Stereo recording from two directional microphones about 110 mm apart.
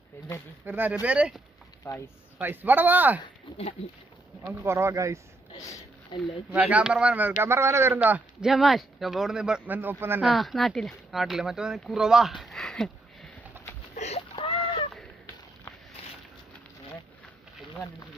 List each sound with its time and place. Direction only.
0.7 s speech: 15° right (ahead or behind)
1.8 s speech: 25° left (ahead or behind)
2.4 s speech: 15° right (ahead or behind)
4.5 s speech: 25° right (ahead or behind)
5.5 s speech: 30° left (ahead or behind)
6.1 s speech: 45° left (ahead or behind)
6.5 s speech: 10° right (ahead or behind)
8.5 s speech: centre (ahead or behind)
9.8 s speech: 20° right (ahead or behind)
10.3 s speech: centre (ahead or behind)
13.9 s a sound: 90° left
14.3 s a sound: 55° left (ahead or behind)